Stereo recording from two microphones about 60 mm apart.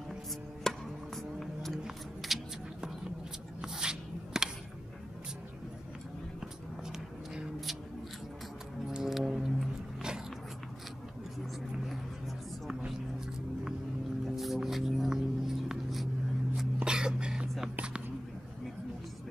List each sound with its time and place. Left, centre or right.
0.7 s music: centre
2.2 s shuffling cards: centre
3.6 s a sound: centre
8.8 s music: centre
14.2 s music: centre
16.5 s a sound: centre
17.7 s whispering: centre